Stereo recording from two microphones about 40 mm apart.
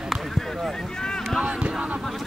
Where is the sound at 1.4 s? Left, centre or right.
Right.